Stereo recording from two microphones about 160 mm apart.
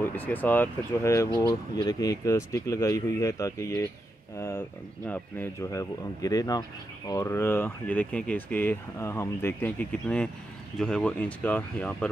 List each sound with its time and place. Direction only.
0.0 s speech: 10° left (ahead or behind)